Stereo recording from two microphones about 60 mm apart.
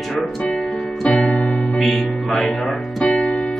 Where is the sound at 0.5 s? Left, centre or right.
Centre.